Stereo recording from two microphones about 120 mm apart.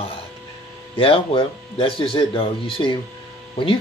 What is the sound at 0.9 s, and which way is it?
Speech, 50° left (ahead or behind).